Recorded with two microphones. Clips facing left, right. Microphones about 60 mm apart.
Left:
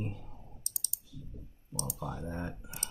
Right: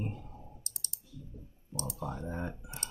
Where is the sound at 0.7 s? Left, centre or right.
Right.